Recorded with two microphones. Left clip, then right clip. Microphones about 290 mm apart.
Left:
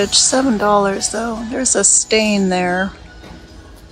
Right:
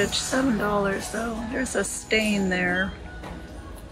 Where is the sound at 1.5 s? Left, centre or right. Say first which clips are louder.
Left 13 dB; centre.